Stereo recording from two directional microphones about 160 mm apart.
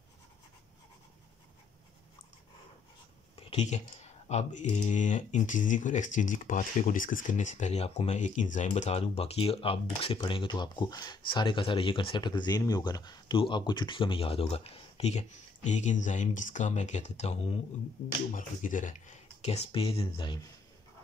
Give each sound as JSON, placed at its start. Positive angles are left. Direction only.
{"t": 3.3, "sound": "speech", "side_deg": 40}
{"t": 18.3, "sound": "speech", "side_deg": 55}